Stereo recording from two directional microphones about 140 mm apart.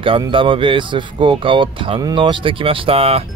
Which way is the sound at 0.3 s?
35° right (ahead or behind).